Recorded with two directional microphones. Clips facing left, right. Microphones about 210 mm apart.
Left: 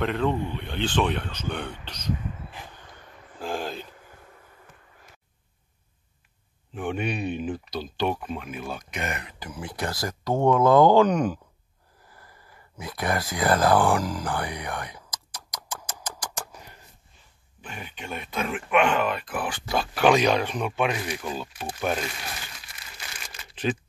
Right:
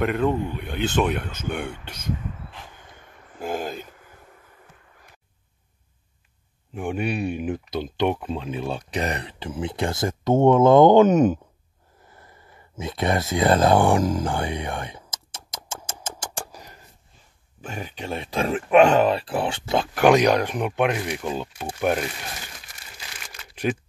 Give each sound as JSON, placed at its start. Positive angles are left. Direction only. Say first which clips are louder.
{"t": 0.0, "sound": "speech", "louder": "right 3 dB", "side_deg": -10}
{"t": 1.7, "sound": "speech", "louder": "right 1 dB", "side_deg": -50}
{"t": 3.3, "sound": "a sound", "louder": "right 3 dB", "side_deg": -5}
{"t": 6.7, "sound": "speech", "louder": "right 2 dB", "side_deg": -10}
{"t": 7.5, "sound": "speech", "louder": "right 4 dB", "side_deg": -20}
{"t": 12.1, "sound": "a sound", "louder": "right 2 dB", "side_deg": -25}
{"t": 17.6, "sound": "speech", "louder": "right 6 dB", "side_deg": -40}
{"t": 23.2, "sound": "shuffling cards", "louder": "right 2 dB", "side_deg": -10}